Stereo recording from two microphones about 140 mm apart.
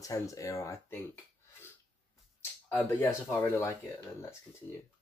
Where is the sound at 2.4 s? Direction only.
20° left (ahead or behind).